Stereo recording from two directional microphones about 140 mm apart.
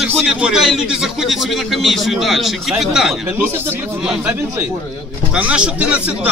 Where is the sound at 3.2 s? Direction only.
15° right (ahead or behind).